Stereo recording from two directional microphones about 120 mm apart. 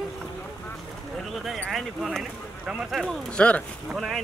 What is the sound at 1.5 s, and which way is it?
Speech, 5° left (ahead or behind).